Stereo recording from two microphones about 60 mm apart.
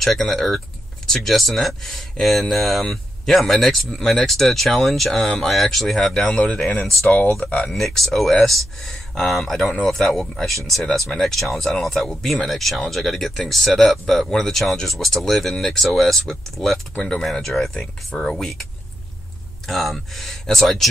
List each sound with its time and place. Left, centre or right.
0.0 s speech: centre
7.0 s speech: left
7.5 s speech: centre
16.9 s speech: centre
17.2 s speech: centre